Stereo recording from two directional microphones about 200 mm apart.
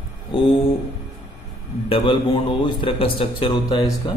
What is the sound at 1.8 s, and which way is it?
Mantra, 25° left (ahead or behind).